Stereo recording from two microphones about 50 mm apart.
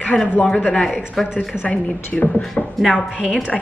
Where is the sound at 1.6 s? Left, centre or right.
Left.